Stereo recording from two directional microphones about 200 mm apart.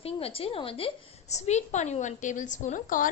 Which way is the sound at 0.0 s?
30° left (ahead or behind).